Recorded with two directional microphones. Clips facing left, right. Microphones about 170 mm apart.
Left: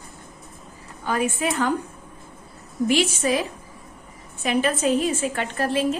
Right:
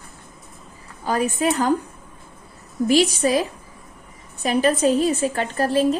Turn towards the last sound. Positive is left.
turn(degrees=-35)  # may be behind; listen again after turning